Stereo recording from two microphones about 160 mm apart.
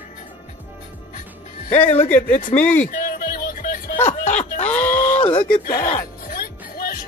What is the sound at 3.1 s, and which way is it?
Music, 60° left (ahead or behind).